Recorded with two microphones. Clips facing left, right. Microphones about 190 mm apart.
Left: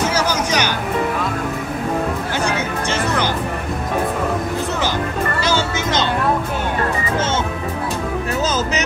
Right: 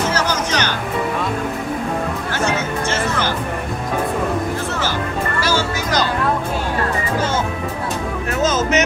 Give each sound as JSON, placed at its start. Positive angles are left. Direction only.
{"t": 0.1, "sound": "music", "side_deg": 10}
{"t": 5.4, "sound": "music", "side_deg": 20}
{"t": 8.5, "sound": "music", "side_deg": 35}